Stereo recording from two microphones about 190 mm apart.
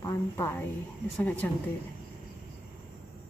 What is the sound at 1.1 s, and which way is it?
Speech, 10° left (ahead or behind).